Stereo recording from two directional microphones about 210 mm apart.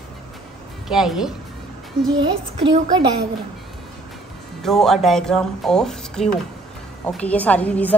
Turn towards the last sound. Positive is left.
turn(degrees=5)  # may be behind; listen again after turning